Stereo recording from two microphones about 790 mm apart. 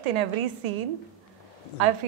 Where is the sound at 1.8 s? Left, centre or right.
Right.